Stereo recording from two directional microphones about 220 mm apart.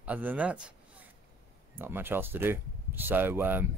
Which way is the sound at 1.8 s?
10° right (ahead or behind).